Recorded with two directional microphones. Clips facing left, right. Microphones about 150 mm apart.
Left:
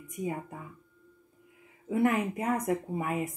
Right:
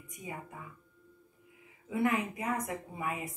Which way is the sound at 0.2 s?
45° left (ahead or behind).